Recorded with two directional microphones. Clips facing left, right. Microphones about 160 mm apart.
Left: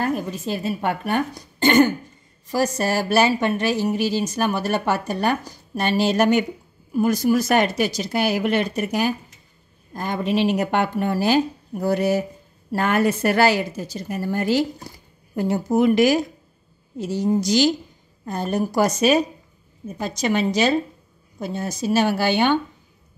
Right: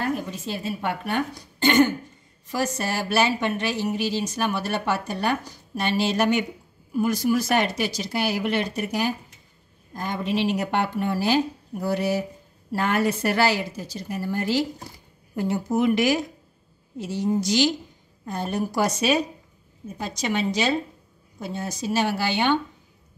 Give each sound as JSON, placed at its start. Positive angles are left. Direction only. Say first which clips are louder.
{"t": 0.5, "sound": "a woman's voice", "louder": "left 4 dB", "side_deg": 45}
{"t": 15.3, "sound": "a woman's voice", "louder": "left 4 dB", "side_deg": 40}